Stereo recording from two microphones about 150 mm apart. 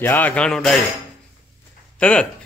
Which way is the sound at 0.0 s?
10° left (ahead or behind).